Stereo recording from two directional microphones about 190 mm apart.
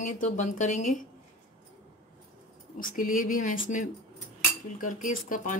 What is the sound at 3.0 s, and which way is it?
Speech, 45° left (ahead or behind).